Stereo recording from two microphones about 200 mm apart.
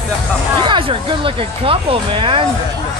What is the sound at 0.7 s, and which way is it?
Speech, 25° right (ahead or behind).